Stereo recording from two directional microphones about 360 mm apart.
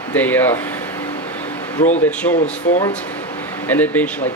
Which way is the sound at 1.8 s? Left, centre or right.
Centre.